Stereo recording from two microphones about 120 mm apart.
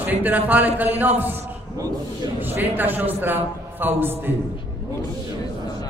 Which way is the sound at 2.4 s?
15° right (ahead or behind).